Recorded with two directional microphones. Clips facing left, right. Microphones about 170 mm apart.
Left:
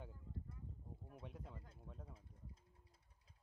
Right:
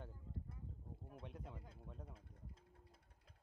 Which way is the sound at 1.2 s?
Centre (ahead or behind).